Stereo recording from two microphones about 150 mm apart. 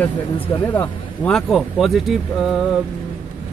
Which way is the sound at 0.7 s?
10° left (ahead or behind).